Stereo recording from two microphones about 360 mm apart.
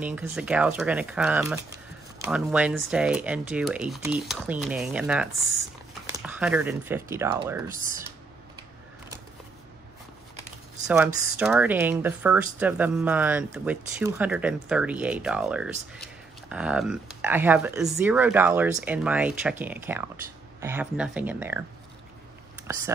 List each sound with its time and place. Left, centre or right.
0.0 s speech: centre
7.7 s speech: right
10.9 s speech: centre